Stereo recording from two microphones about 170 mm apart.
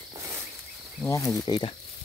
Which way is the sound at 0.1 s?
15° right (ahead or behind).